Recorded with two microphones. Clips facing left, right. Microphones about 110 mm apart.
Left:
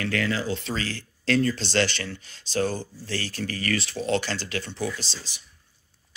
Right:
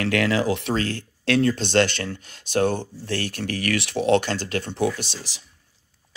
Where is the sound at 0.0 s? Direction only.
70° right (ahead or behind).